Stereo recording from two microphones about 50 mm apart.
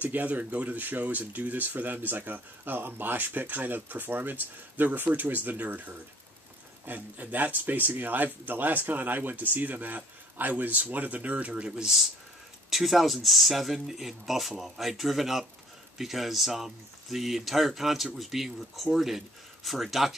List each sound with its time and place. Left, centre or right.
0.0 s speech: right
11.8 s speech: centre